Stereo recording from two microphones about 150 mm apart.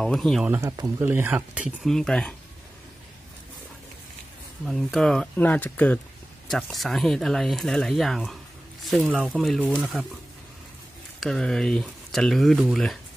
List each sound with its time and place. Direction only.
0.0 s speech: 5° left (ahead or behind)
0.5 s speech: 20° right (ahead or behind)
1.9 s speech: 5° left (ahead or behind)
4.6 s speech: centre (ahead or behind)
11.1 s speech: 5° left (ahead or behind)